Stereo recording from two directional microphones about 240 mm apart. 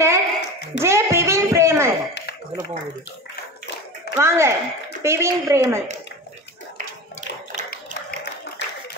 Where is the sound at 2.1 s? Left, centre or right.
Left.